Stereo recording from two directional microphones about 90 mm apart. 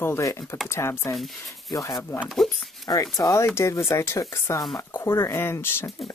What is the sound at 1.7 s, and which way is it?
Speech, 35° left (ahead or behind).